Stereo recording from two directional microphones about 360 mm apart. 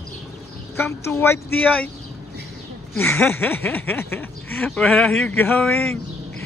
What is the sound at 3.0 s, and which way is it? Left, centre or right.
Speech, centre.